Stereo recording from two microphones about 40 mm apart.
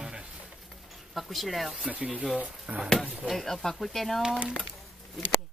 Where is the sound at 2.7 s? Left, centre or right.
Right.